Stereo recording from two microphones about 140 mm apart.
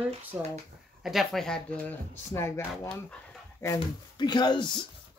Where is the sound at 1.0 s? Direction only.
Centre (ahead or behind).